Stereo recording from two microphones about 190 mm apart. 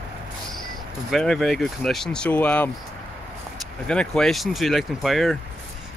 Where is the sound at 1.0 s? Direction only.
Centre (ahead or behind).